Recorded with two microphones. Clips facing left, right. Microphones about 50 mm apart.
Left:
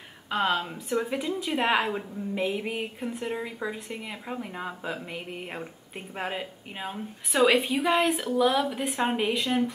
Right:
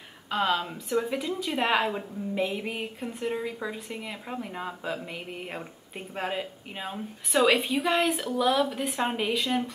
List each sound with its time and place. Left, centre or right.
0.3 s a woman's voice: centre